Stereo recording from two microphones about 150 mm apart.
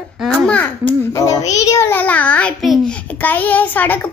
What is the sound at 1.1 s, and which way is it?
A child's voice, 20° left (ahead or behind).